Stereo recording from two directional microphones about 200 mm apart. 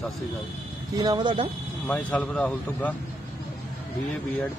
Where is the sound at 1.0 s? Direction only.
20° right (ahead or behind).